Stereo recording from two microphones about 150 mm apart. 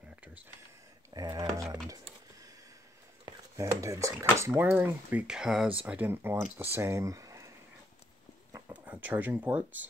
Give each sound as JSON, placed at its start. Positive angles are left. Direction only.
{"t": 1.1, "sound": "speech", "side_deg": -25}
{"t": 3.3, "sound": "speech", "side_deg": -20}
{"t": 8.8, "sound": "speech", "side_deg": -10}